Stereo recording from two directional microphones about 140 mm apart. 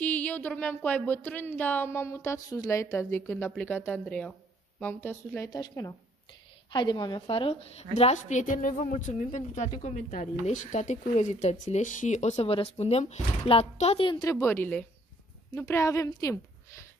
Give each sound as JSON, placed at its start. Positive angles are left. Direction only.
{"t": 0.0, "sound": "a woman's voice", "side_deg": 10}
{"t": 14.3, "sound": "speech", "side_deg": 20}
{"t": 15.5, "sound": "a woman's voice", "side_deg": 25}